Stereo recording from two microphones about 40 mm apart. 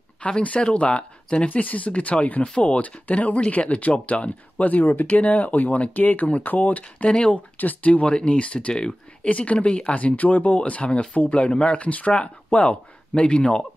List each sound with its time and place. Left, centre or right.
0.2 s speech: left
1.5 s speech: left
6.8 s speech: left
7.5 s speech: left
8.1 s speech: left
9.3 s speech: left
9.9 s speech: left